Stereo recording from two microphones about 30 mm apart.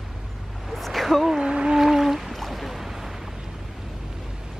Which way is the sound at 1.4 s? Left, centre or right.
Right.